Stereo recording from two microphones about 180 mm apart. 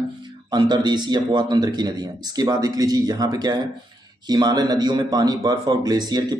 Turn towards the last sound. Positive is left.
turn(degrees=-20)  # may be behind; listen again after turning